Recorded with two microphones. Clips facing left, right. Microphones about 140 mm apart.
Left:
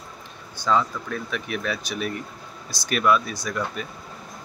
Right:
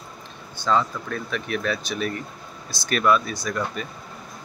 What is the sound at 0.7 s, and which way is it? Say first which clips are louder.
Speech: even; 5° left (ahead or behind).